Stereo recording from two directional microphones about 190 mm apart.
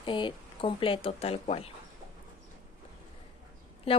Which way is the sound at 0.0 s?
25° left (ahead or behind).